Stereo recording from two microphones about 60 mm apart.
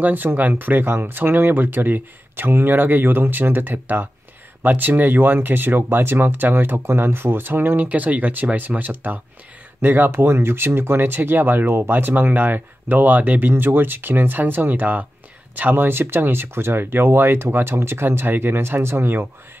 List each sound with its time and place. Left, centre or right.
0.0 s speech: right